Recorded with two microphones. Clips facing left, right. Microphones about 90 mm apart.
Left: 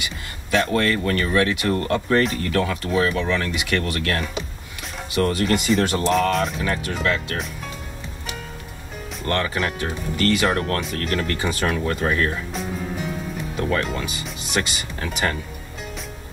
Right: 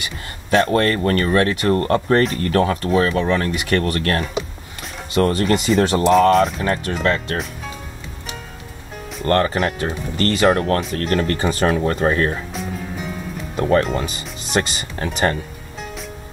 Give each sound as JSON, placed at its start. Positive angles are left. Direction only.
{"t": 0.0, "sound": "speech", "side_deg": -45}
{"t": 6.6, "sound": "speech", "side_deg": -45}
{"t": 9.2, "sound": "speech", "side_deg": -45}
{"t": 13.6, "sound": "speech", "side_deg": -35}